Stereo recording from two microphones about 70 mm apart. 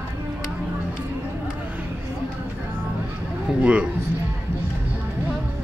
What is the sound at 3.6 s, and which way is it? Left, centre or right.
Speech, centre.